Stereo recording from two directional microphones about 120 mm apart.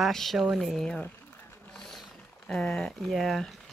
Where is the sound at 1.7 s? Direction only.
Centre (ahead or behind).